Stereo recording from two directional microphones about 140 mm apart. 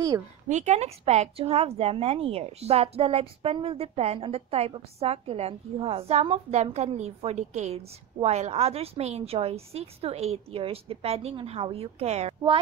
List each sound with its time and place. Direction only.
0.5 s a woman's voice: 55° right (ahead or behind)